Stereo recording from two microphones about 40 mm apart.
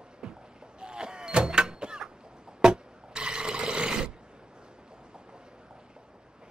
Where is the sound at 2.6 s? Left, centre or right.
Right.